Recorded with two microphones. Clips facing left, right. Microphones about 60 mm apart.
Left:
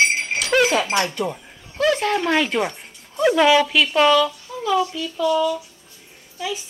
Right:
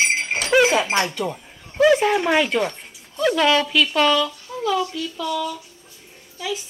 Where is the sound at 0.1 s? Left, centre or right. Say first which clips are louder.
Right 1 dB; right.